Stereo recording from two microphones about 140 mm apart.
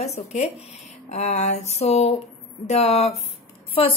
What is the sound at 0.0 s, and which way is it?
A woman's voice, 50° left (ahead or behind).